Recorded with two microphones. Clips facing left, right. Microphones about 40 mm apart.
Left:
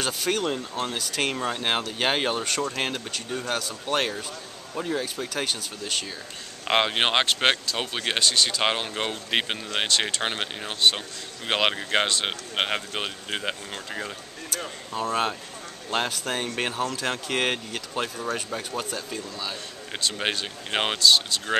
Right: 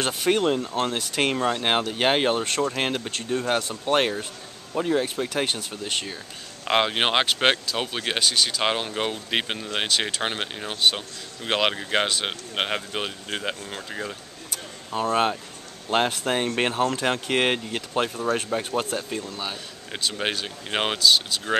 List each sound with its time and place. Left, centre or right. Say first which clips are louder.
0.0 s speech: right 4 dB; centre
0.6 s speech: right 4 dB; right; by 3.0 s centre
3.1 s speech: right 4 dB; right
3.8 s speech: right 4 dB; centre
6.6 s speech: right 1 dB; centre
14.9 s speech: right 4 dB; centre
18.8 s speech: right 4 dB; right
19.9 s speech: even; centre